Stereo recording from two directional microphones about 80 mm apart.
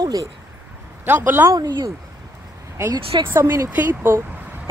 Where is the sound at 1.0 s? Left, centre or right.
Right.